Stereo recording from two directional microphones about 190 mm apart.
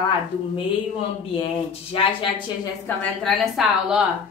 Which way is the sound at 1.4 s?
30° left (ahead or behind).